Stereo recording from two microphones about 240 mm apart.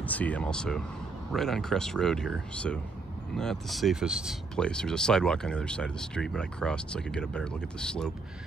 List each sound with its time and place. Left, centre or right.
0.0 s speech: centre